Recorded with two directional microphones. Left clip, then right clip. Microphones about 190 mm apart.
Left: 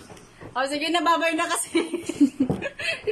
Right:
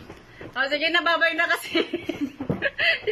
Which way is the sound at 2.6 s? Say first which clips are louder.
Right 6 dB; 10° left (ahead or behind).